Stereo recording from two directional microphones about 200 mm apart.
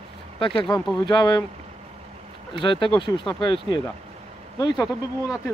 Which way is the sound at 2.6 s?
25° left (ahead or behind).